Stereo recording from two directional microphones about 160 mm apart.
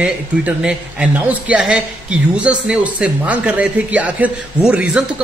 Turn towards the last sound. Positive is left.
turn(degrees=-5)  # may be behind; listen again after turning